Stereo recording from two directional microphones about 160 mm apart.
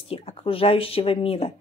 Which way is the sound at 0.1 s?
40° left (ahead or behind).